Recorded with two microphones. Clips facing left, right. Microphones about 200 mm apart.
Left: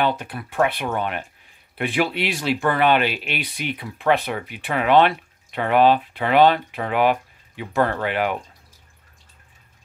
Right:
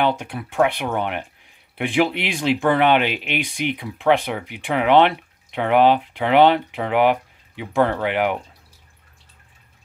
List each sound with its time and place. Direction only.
0.4 s speech: 10° right (ahead or behind)